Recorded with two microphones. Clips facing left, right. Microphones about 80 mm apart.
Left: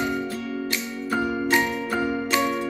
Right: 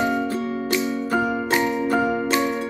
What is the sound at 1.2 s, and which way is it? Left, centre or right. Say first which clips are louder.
Music: right 2 dB; centre.